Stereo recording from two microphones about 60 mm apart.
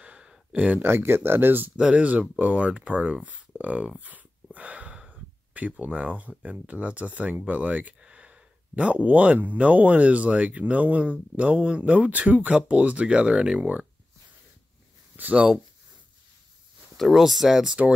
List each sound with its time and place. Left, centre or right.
0.0 s a sound: centre
0.8 s speech: right
1.8 s speech: centre
15.1 s speech: right
16.9 s speech: centre